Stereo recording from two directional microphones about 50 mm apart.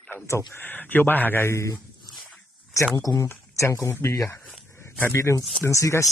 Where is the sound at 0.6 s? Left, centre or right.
Left.